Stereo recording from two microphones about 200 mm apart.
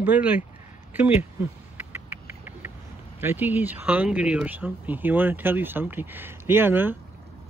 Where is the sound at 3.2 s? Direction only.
10° right (ahead or behind).